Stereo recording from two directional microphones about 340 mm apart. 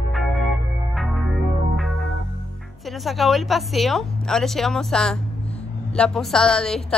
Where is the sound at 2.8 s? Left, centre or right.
Centre.